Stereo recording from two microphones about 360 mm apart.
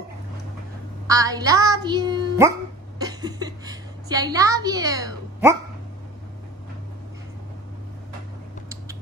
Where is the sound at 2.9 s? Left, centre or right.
Centre.